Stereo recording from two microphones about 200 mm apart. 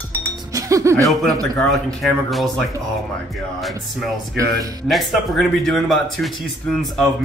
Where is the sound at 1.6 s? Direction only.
Centre (ahead or behind).